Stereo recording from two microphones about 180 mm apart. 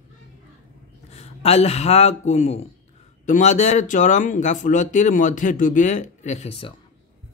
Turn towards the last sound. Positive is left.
turn(degrees=30)  # may be behind; listen again after turning